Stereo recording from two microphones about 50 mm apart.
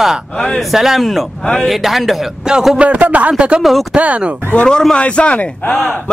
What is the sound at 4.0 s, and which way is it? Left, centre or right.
Speech, right.